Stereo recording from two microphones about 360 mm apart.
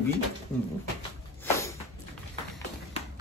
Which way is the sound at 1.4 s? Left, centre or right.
Centre.